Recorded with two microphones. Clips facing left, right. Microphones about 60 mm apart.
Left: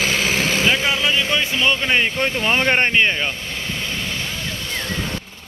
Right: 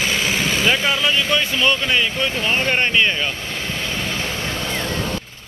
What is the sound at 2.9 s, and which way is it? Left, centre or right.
Speech, left.